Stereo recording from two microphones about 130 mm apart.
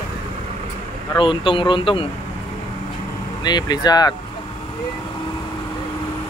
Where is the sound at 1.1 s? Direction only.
40° left (ahead or behind).